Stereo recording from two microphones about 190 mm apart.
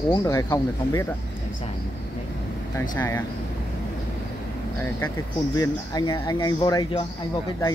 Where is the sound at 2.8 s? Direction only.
10° left (ahead or behind).